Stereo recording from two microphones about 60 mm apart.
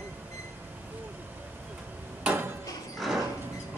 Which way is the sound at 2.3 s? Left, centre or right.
Right.